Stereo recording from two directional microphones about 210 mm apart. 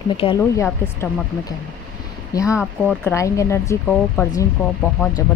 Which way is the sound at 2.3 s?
15° left (ahead or behind).